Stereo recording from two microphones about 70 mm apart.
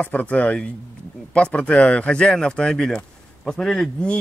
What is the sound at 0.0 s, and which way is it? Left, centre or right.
Speech, left.